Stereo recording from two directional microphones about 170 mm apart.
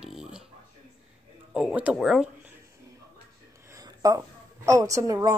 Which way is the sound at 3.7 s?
20° right (ahead or behind).